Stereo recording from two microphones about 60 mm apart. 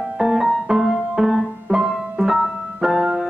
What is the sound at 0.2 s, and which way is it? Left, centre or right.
Music, centre.